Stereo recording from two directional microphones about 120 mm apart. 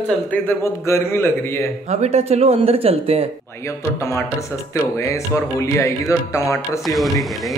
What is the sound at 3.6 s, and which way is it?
A man's voice, 25° left (ahead or behind).